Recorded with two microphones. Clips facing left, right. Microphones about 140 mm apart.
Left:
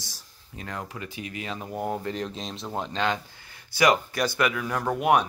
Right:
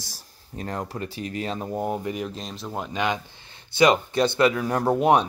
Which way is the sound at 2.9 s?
15° right (ahead or behind).